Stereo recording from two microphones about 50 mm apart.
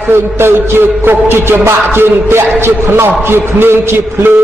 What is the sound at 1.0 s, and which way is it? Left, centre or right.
Music, right.